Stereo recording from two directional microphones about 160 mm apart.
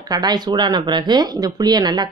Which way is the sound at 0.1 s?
25° right (ahead or behind).